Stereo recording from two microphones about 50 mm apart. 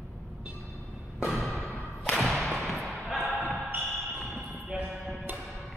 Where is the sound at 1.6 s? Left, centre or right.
Centre.